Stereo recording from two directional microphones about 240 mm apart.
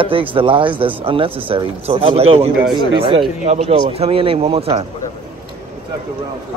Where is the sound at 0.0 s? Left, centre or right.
Right.